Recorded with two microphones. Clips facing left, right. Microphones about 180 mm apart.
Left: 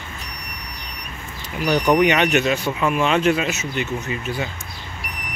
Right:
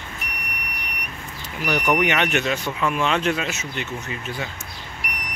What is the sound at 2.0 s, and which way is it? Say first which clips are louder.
Speech: left 4 dB; 10° left (ahead or behind).